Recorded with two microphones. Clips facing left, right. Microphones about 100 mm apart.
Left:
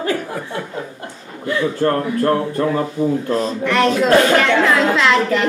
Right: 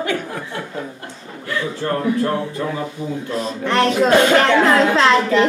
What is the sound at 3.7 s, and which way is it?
Speech, 30° right (ahead or behind).